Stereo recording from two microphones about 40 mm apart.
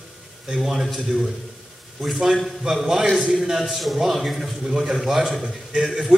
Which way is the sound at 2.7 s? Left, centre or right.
Centre.